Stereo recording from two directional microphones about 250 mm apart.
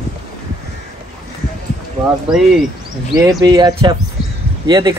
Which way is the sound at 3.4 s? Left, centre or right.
Centre.